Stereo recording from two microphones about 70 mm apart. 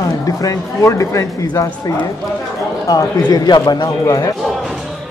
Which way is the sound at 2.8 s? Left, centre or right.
Left.